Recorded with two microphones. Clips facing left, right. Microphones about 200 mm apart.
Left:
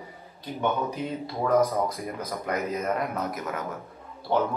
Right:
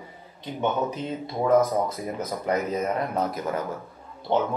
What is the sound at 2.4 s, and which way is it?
Speech, 30° right (ahead or behind).